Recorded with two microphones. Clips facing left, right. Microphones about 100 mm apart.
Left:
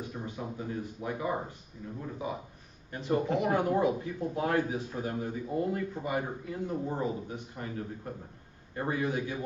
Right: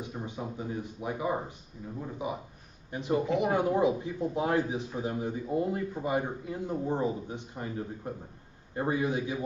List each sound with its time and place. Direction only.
0.0 s speech: 20° right (ahead or behind)